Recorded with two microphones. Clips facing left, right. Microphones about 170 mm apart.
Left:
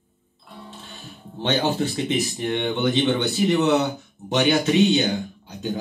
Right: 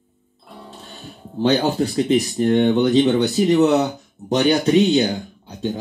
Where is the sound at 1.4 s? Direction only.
35° right (ahead or behind).